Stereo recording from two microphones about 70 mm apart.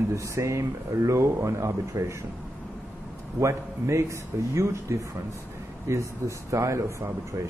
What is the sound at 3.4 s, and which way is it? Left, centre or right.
Speech, right.